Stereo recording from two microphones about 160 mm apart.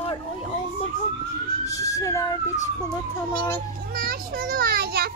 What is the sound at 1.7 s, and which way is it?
Child singing, 20° left (ahead or behind).